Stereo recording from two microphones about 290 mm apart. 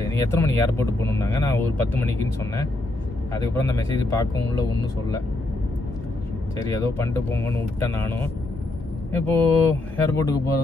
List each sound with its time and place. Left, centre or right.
0.1 s speech: centre
6.7 s speech: centre